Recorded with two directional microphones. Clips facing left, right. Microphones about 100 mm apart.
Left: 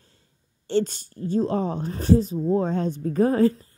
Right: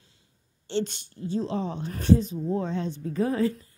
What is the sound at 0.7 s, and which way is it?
A woman's voice, 40° left (ahead or behind).